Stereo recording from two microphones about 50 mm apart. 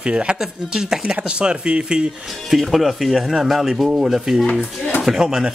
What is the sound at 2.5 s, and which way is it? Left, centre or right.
Speech, centre.